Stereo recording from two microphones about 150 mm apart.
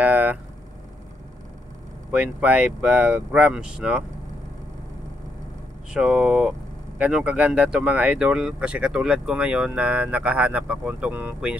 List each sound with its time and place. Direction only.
0.0 s a sound: 10° right (ahead or behind)
2.0 s speech: 10° right (ahead or behind)
5.9 s speech: 5° right (ahead or behind)